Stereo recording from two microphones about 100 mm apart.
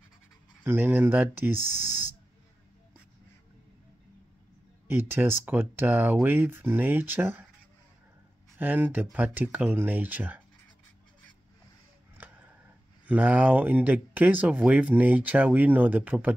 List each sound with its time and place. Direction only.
0.7 s speech: 20° right (ahead or behind)
4.8 s speech: 20° right (ahead or behind)
8.5 s speech: 20° right (ahead or behind)
12.2 s a sound: 15° right (ahead or behind)
13.0 s speech: 15° right (ahead or behind)